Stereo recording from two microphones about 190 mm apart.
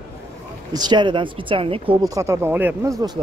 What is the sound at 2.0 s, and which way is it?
Speech, 15° right (ahead or behind).